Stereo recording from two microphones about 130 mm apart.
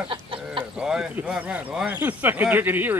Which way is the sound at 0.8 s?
5° right (ahead or behind).